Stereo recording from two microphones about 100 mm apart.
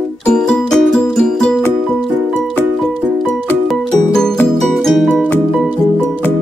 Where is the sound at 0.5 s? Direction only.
5° left (ahead or behind).